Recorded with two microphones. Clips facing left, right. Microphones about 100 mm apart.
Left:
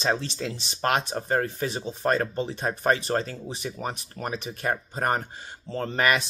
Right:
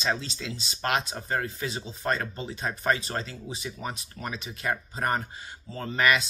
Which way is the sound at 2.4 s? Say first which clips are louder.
Left 4 dB; 25° left (ahead or behind).